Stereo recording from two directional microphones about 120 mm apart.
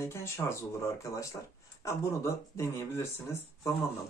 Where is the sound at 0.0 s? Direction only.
20° left (ahead or behind).